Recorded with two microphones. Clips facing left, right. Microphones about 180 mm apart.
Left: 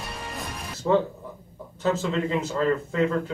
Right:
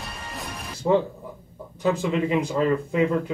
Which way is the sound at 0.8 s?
30° right (ahead or behind).